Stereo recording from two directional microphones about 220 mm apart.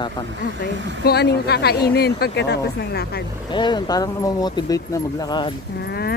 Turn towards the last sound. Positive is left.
turn(degrees=45)  # may be behind; listen again after turning